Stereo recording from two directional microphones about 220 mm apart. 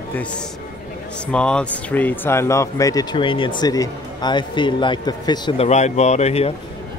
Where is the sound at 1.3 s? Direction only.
5° left (ahead or behind); by 6.5 s 30° left (ahead or behind).